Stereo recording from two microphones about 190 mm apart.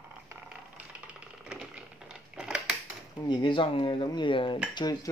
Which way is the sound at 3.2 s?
25° left (ahead or behind).